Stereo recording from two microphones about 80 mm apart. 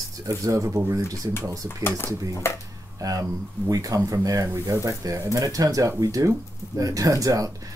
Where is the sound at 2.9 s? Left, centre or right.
Right.